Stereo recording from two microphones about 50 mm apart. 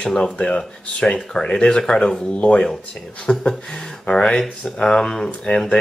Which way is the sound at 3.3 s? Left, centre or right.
Centre.